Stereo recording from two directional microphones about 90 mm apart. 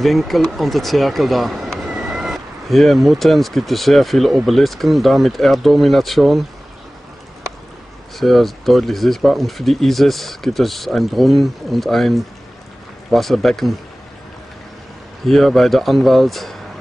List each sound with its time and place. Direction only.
0.0 s speech: centre (ahead or behind)
8.2 s speech: centre (ahead or behind)
15.2 s speech: centre (ahead or behind)